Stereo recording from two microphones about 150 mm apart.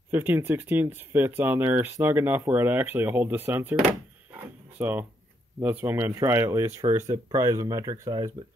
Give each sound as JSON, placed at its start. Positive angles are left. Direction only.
{"t": 0.1, "sound": "speech", "side_deg": -15}
{"t": 4.3, "sound": "a sound", "side_deg": -10}
{"t": 5.6, "sound": "speech", "side_deg": -15}